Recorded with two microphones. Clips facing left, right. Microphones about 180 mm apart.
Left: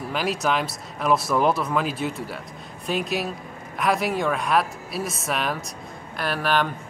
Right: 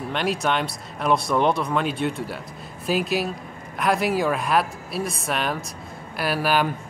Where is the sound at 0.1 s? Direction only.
Centre (ahead or behind).